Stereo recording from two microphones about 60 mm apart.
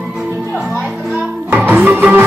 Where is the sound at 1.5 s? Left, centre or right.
Right.